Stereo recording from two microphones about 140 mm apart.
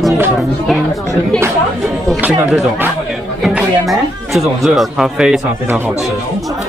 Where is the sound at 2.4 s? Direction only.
5° right (ahead or behind).